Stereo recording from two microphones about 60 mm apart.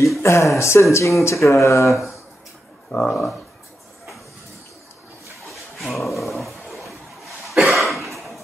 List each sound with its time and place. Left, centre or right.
0.2 s speech: left
2.9 s speech: left
5.9 s dog: centre
7.5 s cough: centre